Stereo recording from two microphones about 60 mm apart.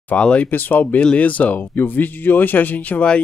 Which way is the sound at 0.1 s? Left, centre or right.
Centre.